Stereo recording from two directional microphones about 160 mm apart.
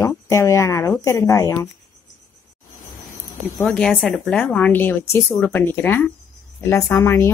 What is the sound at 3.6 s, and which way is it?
Speech, 5° left (ahead or behind).